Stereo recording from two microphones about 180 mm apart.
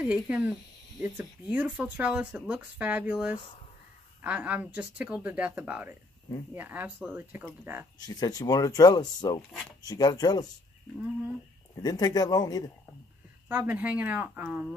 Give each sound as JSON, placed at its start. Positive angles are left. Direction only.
{"t": 0.0, "sound": "speech", "side_deg": -5}
{"t": 8.0, "sound": "speech", "side_deg": 20}
{"t": 9.5, "sound": "speech", "side_deg": 5}
{"t": 9.8, "sound": "speech", "side_deg": 20}
{"t": 11.8, "sound": "speech", "side_deg": 20}
{"t": 13.5, "sound": "speech", "side_deg": -10}